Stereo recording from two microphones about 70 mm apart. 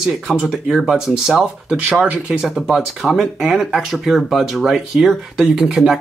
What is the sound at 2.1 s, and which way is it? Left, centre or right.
Speech, centre.